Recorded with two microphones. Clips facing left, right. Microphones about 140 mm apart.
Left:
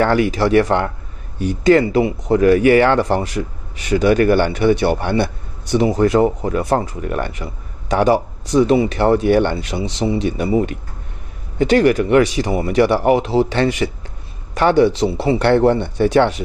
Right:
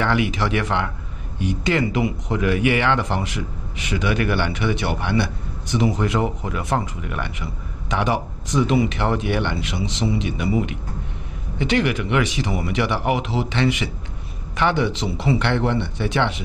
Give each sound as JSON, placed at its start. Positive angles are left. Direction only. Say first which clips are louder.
{"t": 0.0, "sound": "speech", "louder": "left 6 dB", "side_deg": 40}